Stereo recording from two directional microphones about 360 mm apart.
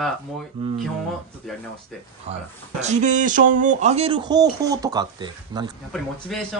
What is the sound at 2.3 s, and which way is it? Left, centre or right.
Speech, centre.